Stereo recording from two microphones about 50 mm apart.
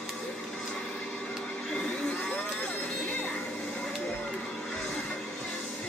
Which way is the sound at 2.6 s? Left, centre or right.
Left.